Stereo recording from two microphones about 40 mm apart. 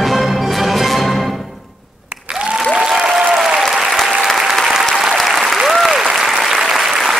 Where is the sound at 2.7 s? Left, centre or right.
Centre.